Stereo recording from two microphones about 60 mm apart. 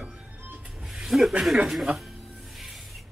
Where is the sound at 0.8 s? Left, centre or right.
Centre.